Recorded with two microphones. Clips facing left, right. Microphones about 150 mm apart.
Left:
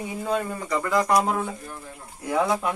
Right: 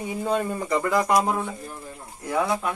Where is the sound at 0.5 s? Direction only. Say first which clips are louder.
Right 3 dB; 20° right (ahead or behind).